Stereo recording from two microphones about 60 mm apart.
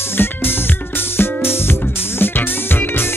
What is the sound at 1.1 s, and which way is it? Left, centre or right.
Music, left.